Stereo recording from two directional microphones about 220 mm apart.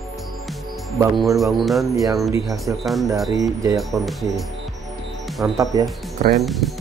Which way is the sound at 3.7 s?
Centre (ahead or behind).